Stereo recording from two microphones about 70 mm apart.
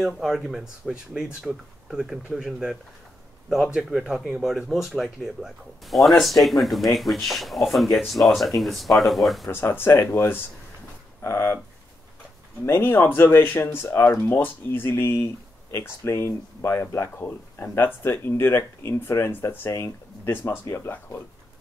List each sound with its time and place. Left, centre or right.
0.0 s speech: centre
9.5 s speech: left
12.6 s speech: left